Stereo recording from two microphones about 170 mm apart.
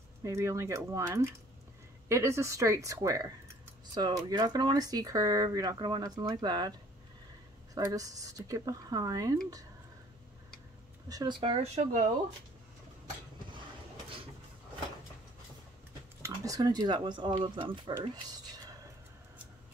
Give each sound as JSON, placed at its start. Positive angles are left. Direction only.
{"t": 0.2, "sound": "speech", "side_deg": -15}
{"t": 7.7, "sound": "speech", "side_deg": -20}
{"t": 11.1, "sound": "speech", "side_deg": -25}
{"t": 11.6, "sound": "speech", "side_deg": -45}
{"t": 16.2, "sound": "speech", "side_deg": -20}